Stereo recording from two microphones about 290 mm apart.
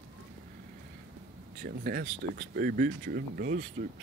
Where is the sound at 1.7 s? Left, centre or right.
Right.